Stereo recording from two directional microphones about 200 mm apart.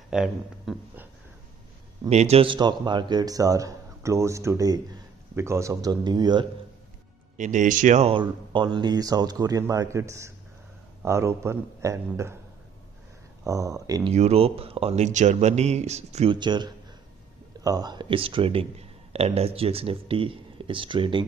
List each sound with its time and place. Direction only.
0.1 s speech: 5° right (ahead or behind)
2.0 s a man's voice: 30° right (ahead or behind)
7.3 s a man's voice: 40° right (ahead or behind); by 12.4 s 15° right (ahead or behind)
13.4 s speech: 15° right (ahead or behind)
14.1 s speech: 30° right (ahead or behind)